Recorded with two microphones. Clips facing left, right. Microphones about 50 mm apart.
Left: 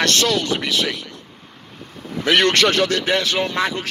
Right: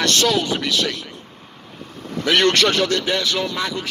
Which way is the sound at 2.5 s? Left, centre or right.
Centre.